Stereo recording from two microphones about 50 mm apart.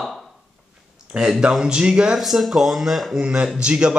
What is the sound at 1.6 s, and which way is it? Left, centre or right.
Speech, centre.